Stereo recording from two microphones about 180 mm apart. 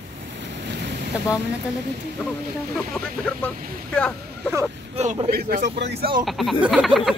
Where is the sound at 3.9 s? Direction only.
5° left (ahead or behind).